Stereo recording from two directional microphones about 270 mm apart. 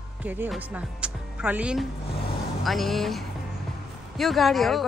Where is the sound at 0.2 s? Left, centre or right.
Centre.